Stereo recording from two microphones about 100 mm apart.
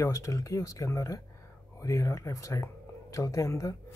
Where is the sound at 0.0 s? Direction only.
30° left (ahead or behind).